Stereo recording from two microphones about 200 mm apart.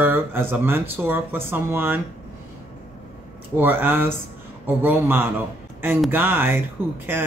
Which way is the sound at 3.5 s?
10° right (ahead or behind).